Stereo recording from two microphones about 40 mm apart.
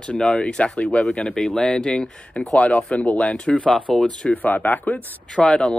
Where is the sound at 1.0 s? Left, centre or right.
Centre; by 3.8 s left.